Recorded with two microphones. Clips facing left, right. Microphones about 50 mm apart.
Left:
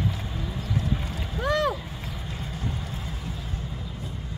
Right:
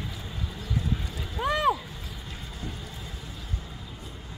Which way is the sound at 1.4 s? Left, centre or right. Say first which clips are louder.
Even; centre.